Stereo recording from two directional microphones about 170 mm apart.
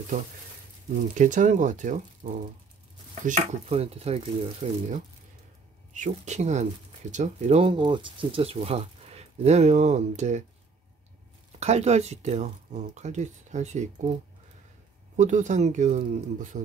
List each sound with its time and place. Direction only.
1.1 s speech: 50° right (ahead or behind); by 4.8 s 30° right (ahead or behind)
5.9 s speech: 45° right (ahead or behind)
11.6 s speech: 40° right (ahead or behind)
15.1 s speech: 45° right (ahead or behind)